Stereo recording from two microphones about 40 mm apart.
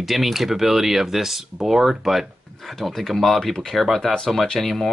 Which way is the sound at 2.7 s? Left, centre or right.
Centre.